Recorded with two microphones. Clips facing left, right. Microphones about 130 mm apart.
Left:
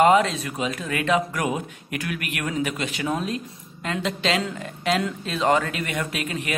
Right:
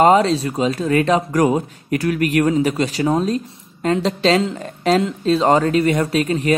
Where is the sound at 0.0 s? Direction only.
35° right (ahead or behind).